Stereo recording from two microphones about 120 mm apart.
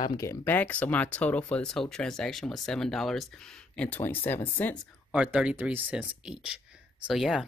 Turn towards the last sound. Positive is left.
turn(degrees=-5)  # may be behind; listen again after turning